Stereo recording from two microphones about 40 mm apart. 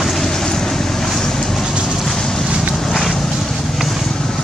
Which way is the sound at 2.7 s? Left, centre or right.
Centre.